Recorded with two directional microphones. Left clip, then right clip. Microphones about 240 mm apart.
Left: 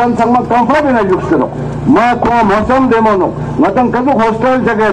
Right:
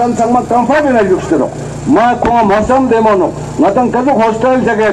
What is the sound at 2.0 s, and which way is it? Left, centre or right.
A man's voice, right.